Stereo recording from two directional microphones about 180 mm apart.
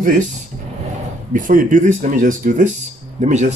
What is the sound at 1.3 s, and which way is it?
Speech, 50° right (ahead or behind).